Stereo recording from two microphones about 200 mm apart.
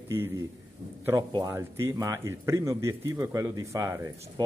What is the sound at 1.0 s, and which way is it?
A man's voice, 15° right (ahead or behind).